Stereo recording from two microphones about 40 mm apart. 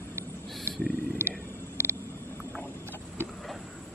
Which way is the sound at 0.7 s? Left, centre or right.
Right.